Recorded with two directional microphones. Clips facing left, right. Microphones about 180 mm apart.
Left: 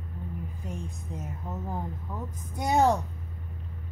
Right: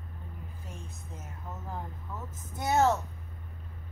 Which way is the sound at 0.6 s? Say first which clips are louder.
Left 8 dB; 15° left (ahead or behind).